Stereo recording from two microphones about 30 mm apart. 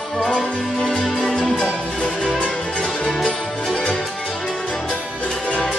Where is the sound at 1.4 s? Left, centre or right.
Left.